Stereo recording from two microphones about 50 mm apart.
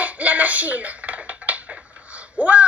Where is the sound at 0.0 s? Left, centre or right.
Right.